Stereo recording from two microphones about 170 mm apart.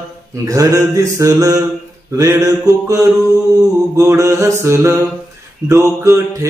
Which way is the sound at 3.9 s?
15° right (ahead or behind).